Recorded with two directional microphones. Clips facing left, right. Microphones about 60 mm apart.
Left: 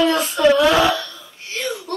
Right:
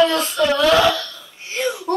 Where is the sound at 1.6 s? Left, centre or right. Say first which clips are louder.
Right 4 dB; centre.